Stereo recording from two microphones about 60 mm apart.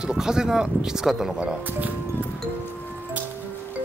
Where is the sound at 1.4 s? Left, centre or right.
Centre.